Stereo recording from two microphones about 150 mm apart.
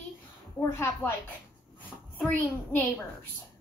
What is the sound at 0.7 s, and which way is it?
Speech, 15° left (ahead or behind).